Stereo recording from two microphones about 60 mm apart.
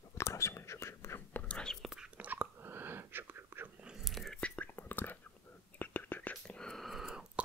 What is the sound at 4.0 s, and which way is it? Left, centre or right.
Whispering, centre.